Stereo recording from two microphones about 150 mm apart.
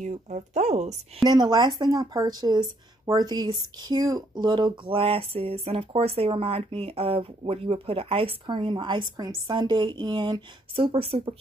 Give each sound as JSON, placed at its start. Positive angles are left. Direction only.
{"t": 0.0, "sound": "speech", "side_deg": -50}
{"t": 1.2, "sound": "speech", "side_deg": -30}